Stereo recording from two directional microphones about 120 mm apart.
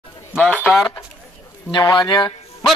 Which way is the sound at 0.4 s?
10° left (ahead or behind).